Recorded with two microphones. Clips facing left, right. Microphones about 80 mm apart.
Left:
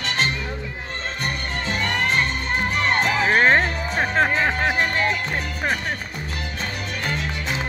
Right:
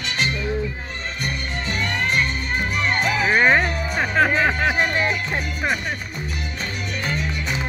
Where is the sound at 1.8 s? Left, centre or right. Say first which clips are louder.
Even; left.